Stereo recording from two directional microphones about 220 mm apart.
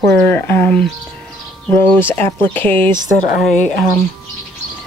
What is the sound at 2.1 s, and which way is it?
Speech, 10° left (ahead or behind).